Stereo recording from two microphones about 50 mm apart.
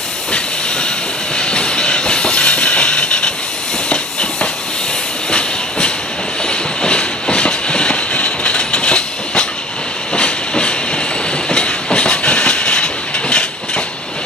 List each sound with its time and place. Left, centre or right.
0.3 s train: centre
10.1 s hiss: centre
11.4 s train: centre